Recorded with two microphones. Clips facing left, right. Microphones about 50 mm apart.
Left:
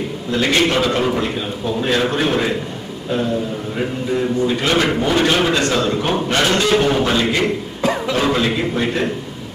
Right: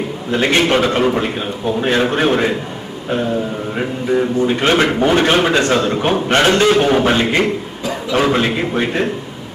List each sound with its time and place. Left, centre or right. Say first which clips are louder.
0.3 s a man's voice: right 2 dB; right
4.5 s a man's voice: right 3 dB; right